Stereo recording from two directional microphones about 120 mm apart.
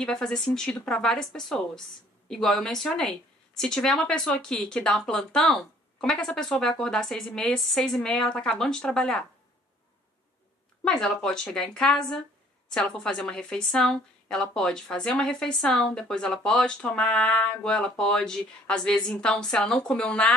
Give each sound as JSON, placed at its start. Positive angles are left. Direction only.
{"t": 0.0, "sound": "a woman's voice", "side_deg": 5}
{"t": 10.8, "sound": "a woman's voice", "side_deg": 5}